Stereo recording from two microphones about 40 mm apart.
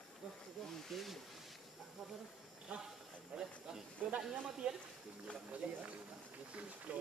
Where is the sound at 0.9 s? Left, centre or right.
Centre.